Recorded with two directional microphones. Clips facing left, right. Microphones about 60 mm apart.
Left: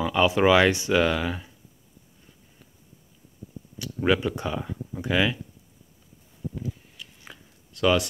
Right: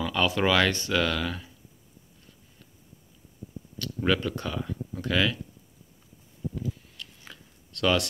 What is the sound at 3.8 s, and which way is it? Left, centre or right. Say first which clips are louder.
Speech: left 3 dB; centre.